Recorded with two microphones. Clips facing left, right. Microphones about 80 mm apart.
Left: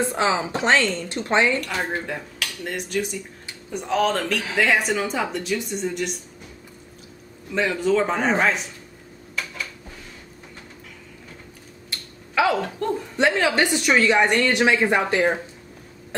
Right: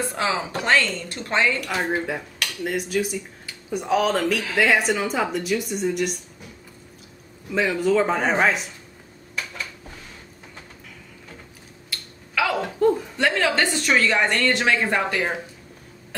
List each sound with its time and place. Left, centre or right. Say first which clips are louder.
0.0 s a woman's voice: left 3 dB; left
1.6 s speech: right 2 dB; centre
7.5 s speech: right 1 dB; centre
12.4 s a sound: left 3 dB; left
12.8 s chuckle: right 9 dB; centre
13.2 s speech: left 3 dB; centre